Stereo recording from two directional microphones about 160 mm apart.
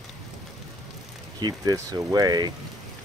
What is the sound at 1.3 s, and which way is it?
Speech, 25° right (ahead or behind).